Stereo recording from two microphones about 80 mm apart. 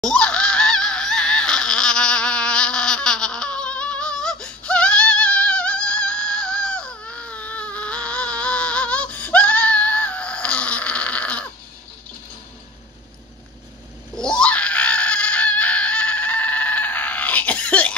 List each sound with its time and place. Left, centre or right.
0.0 s honk: centre
14.1 s screaming: centre